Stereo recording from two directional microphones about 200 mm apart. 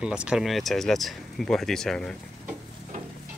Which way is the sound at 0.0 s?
5° right (ahead or behind).